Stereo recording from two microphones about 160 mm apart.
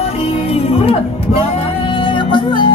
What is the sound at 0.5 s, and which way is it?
Music, 40° left (ahead or behind).